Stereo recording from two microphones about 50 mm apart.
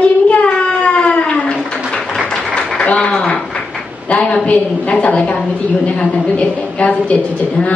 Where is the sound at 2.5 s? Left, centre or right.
Left.